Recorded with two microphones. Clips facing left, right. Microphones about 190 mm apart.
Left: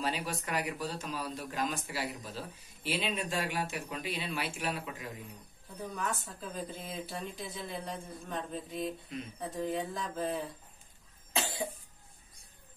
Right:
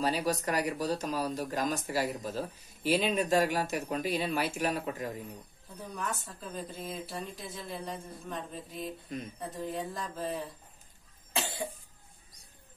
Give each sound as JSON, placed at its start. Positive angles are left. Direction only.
{"t": 0.0, "sound": "speech", "side_deg": -40}
{"t": 5.8, "sound": "a woman's voice", "side_deg": 0}
{"t": 11.3, "sound": "cough", "side_deg": 0}